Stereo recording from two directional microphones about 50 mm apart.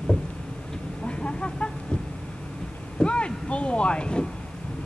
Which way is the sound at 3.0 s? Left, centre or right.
Left.